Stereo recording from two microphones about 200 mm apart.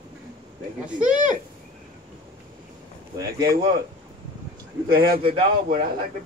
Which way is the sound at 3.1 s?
20° right (ahead or behind).